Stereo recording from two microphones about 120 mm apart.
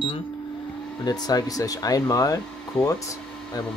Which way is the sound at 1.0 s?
35° left (ahead or behind).